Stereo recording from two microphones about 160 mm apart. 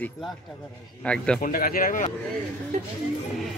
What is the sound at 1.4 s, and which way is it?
Speech, 60° left (ahead or behind).